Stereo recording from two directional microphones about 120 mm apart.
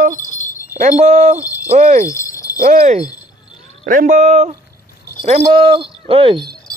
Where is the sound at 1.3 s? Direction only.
15° right (ahead or behind).